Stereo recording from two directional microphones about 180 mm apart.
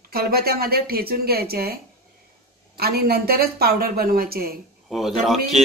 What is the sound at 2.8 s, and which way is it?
Speech, 60° right (ahead or behind).